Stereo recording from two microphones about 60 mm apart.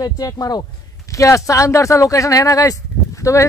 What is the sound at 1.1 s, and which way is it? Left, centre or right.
A man's voice, left.